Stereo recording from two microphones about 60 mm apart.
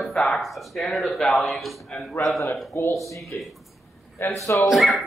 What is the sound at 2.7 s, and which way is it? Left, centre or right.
Speech, left.